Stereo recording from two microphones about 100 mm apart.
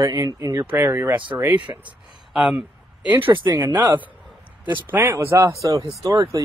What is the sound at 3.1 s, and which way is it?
Speech, 60° right (ahead or behind).